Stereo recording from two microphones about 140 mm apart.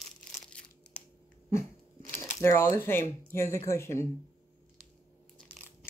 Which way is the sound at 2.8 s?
15° left (ahead or behind).